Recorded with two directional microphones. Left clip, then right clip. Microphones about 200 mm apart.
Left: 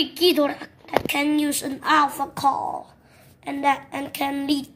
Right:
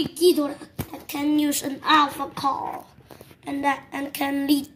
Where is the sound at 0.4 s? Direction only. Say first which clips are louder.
Left 5 dB; 15° left (ahead or behind).